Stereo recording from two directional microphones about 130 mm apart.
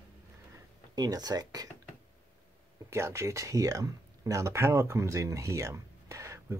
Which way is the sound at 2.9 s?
20° right (ahead or behind).